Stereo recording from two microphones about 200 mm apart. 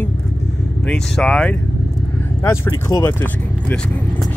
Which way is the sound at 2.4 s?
15° left (ahead or behind).